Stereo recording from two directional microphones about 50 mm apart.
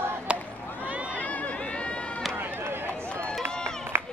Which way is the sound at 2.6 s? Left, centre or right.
Right.